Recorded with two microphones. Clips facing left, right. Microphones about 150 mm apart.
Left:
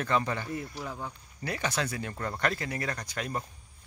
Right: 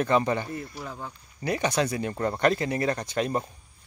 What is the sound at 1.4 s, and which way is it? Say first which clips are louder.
Speech: right 6 dB; 20° right (ahead or behind).